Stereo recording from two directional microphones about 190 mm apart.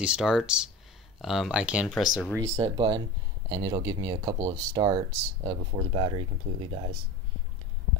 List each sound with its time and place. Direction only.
0.0 s speech: 5° right (ahead or behind)
2.3 s speech: 15° right (ahead or behind)